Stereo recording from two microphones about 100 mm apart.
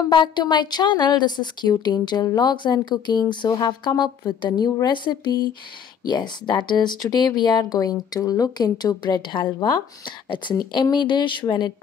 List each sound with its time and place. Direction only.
0.1 s speech: 50° left (ahead or behind)